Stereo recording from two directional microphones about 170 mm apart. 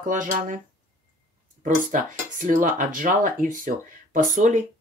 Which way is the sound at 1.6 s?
50° right (ahead or behind).